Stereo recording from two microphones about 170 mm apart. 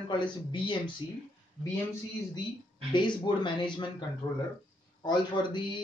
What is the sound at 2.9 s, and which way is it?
Speech, 25° left (ahead or behind).